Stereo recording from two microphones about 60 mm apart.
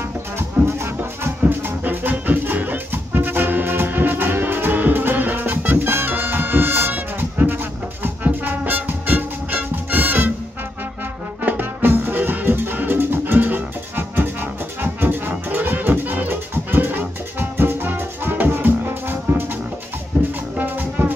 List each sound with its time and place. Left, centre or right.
0.7 s music: right
1.4 s music: right
11.4 s music: right
20.5 s music: right